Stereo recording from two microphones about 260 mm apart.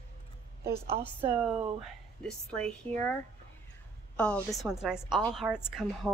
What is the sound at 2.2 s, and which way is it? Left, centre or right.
Speech, centre.